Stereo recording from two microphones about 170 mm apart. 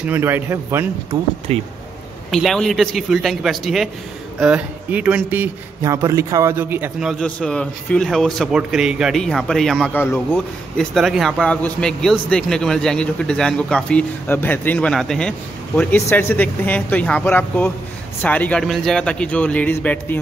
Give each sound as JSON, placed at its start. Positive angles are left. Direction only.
{"t": 0.0, "sound": "speech", "side_deg": -10}
{"t": 1.5, "sound": "speech", "side_deg": -35}
{"t": 2.3, "sound": "speech", "side_deg": 0}